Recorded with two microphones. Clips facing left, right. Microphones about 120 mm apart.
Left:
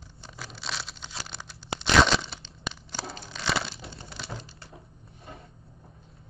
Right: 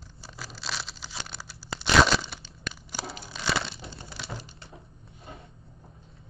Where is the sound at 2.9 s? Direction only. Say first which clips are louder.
Even; 5° right (ahead or behind).